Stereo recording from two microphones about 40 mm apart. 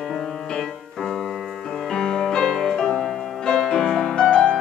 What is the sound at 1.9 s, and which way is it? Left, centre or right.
Music, centre.